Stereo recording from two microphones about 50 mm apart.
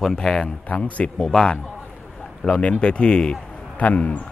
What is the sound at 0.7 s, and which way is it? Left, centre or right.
A man's voice, left.